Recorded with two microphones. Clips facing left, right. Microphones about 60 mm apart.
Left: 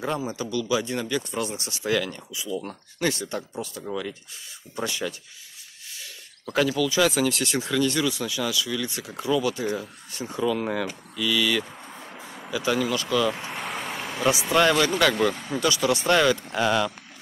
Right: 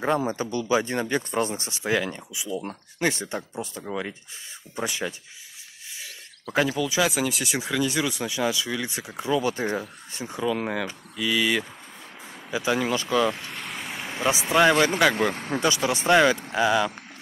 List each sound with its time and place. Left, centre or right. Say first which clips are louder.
0.2 s speech: right 1 dB; right
4.7 s speech: even; right
6.5 s speech: left 1 dB; right
7.1 s speech: left 2 dB; centre; by 10.2 s right
10.4 s speech: left 1 dB; centre
13.4 s vehicle: left 3 dB; centre
14.0 s speech: left 1 dB; right
15.1 s speech: left 1 dB; right; by 16.9 s centre